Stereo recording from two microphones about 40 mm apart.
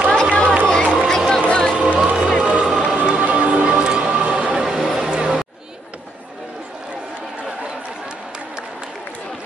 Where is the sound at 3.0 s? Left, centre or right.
Right.